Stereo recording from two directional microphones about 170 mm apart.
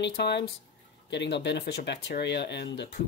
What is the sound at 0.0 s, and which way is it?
Speech, 85° left.